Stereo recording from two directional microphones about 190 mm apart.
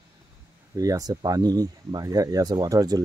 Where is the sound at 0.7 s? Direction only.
20° right (ahead or behind).